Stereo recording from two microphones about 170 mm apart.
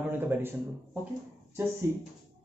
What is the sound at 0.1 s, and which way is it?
Speech, 10° right (ahead or behind).